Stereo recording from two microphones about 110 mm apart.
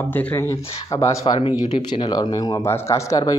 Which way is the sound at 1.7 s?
45° left (ahead or behind).